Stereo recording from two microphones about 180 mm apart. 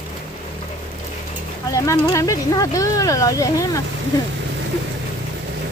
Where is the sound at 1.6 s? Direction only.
20° left (ahead or behind).